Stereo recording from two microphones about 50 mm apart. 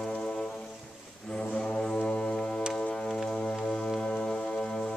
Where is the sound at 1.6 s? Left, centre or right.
Centre.